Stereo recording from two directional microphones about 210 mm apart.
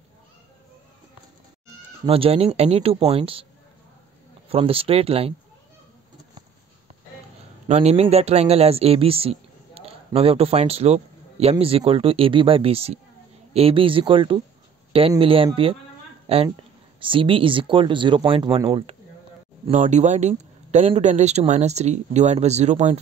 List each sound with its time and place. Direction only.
2.0 s speech: 25° right (ahead or behind)
4.5 s speech: 25° right (ahead or behind)
7.6 s speech: 30° right (ahead or behind)